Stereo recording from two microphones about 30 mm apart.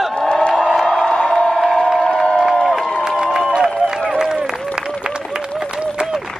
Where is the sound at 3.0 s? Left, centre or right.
Right.